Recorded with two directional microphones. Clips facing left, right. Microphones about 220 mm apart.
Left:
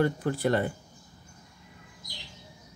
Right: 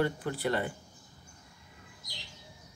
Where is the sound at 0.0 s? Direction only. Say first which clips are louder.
Left 4 dB; 45° left (ahead or behind).